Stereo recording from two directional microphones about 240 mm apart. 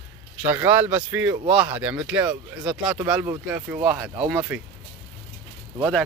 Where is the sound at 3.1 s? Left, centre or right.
Centre.